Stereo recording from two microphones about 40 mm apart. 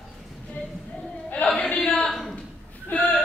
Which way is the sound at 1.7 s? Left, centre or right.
Left.